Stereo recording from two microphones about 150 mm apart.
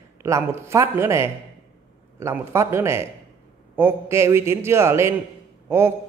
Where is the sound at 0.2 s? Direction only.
15° right (ahead or behind).